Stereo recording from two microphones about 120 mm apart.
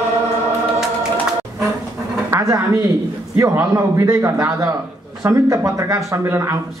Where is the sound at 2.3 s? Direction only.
25° right (ahead or behind).